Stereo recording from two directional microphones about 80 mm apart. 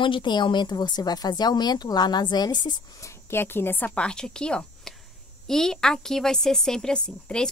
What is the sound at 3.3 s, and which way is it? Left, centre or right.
A woman's voice, left.